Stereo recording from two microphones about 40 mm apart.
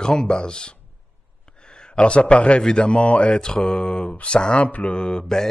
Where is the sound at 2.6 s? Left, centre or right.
Left.